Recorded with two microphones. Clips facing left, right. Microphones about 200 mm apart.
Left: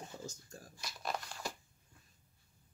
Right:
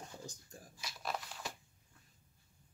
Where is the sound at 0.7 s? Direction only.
Centre (ahead or behind).